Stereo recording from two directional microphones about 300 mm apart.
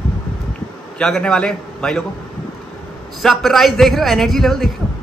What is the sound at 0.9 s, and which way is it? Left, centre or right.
Speech, centre.